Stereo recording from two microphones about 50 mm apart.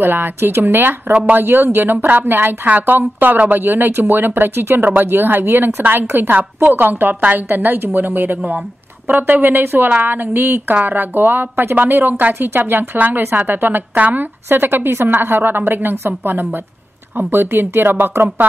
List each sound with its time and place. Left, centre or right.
0.0 s a woman's voice: right
14.5 s a woman's voice: right